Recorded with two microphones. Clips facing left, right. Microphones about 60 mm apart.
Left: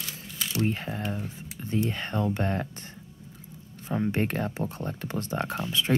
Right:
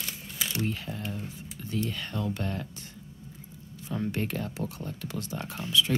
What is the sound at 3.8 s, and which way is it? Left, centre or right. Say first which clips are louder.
Speech: left 4 dB; left.